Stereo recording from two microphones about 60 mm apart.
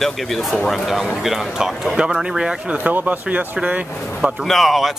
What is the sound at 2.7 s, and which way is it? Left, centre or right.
Speech, right.